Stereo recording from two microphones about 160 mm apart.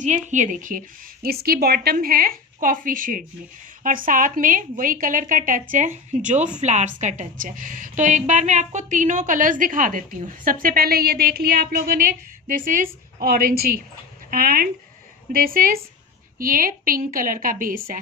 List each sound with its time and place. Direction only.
0.0 s a woman's voice: 50° right (ahead or behind)